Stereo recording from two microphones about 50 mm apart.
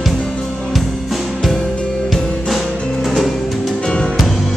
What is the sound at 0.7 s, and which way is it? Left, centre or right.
Music, centre.